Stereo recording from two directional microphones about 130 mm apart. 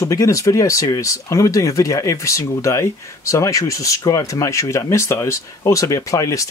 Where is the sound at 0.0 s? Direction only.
25° left (ahead or behind).